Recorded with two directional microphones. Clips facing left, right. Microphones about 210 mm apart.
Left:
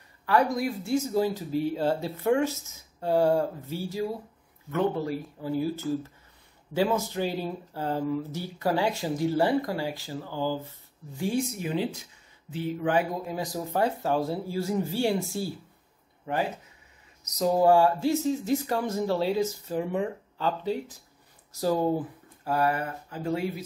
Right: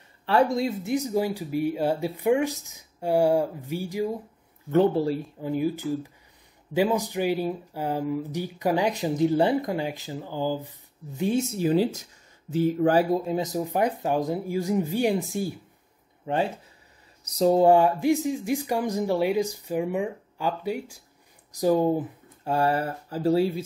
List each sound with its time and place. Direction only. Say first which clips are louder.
0.3 s speech: right 2 dB; 25° right (ahead or behind)
4.6 s speech: right 6 dB; 30° right (ahead or behind)
13.2 s speech: right 5 dB; 20° right (ahead or behind)